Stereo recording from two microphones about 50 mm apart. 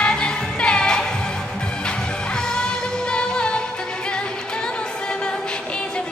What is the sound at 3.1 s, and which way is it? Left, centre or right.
Music, centre.